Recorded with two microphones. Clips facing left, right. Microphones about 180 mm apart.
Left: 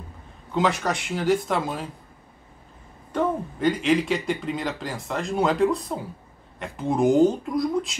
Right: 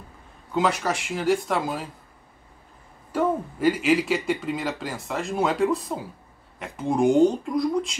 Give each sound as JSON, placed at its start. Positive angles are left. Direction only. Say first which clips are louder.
{"t": 0.5, "sound": "speech", "louder": "even", "side_deg": 0}
{"t": 3.1, "sound": "speech", "louder": "right 1 dB", "side_deg": -5}